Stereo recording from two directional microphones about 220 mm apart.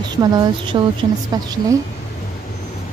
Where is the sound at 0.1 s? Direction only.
20° right (ahead or behind).